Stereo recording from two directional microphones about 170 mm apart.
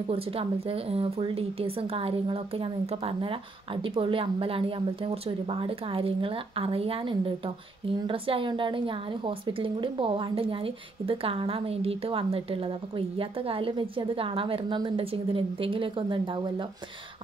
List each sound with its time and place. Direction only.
0.1 s a woman's voice: 35° right (ahead or behind)